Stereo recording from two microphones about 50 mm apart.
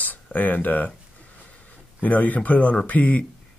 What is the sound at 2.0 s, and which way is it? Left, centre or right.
Speech, left.